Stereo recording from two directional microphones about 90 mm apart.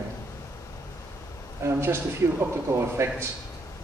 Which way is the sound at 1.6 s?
25° right (ahead or behind).